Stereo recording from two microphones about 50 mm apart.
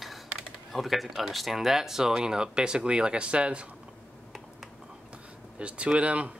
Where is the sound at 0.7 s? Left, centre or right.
Centre; by 3.6 s right.